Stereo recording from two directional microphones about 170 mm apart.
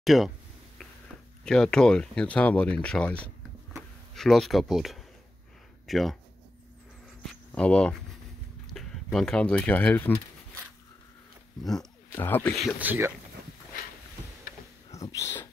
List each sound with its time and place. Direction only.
0.0 s speech: centre (ahead or behind)
1.4 s speech: 5° left (ahead or behind)
7.5 s speech: 5° left (ahead or behind)
11.6 s speech: centre (ahead or behind)
12.7 s speech: 10° right (ahead or behind)
14.9 s speech: 20° left (ahead or behind)